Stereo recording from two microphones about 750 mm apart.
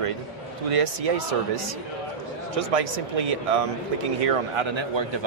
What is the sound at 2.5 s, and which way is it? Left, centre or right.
A man's voice, right.